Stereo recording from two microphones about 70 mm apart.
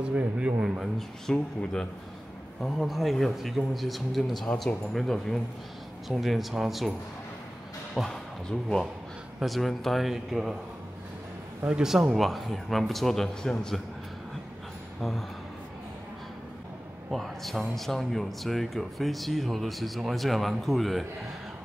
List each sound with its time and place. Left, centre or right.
0.1 s speech: right
0.9 s speech: centre
4.5 s speech: left
4.9 s speech: centre
7.9 s speech: centre
11.6 s speech: centre
15.0 s a man's voice: centre
17.1 s speech: centre